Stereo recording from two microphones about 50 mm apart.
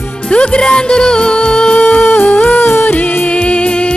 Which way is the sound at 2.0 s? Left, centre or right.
Left.